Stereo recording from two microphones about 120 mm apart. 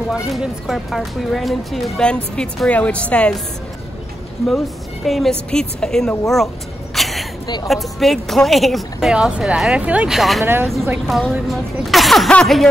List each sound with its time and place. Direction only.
0.1 s speech: 5° right (ahead or behind)
5.0 s speech: centre (ahead or behind)
7.0 s a sound: centre (ahead or behind)
7.6 s speech: centre (ahead or behind)
10.4 s speech: 20° right (ahead or behind)
11.1 s speech: centre (ahead or behind)